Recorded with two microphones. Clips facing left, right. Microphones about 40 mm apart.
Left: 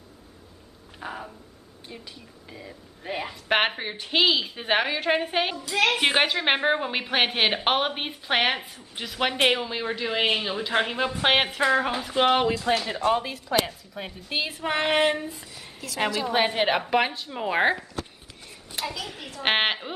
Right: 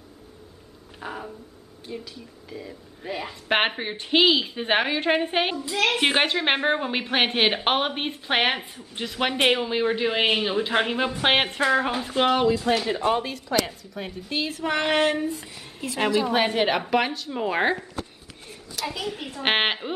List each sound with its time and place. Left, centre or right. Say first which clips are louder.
0.9 s a sound: right 1 dB; centre
1.9 s a woman's voice: right 6 dB; centre
5.9 s a woman's voice: right 1 dB; centre
12.3 s speech: right 1 dB; left
12.8 s a woman's voice: right 1 dB; centre
15.8 s a woman's voice: right 6 dB; right
16.2 s a woman's voice: right 1 dB; centre
18.9 s a woman's voice: right 4 dB; centre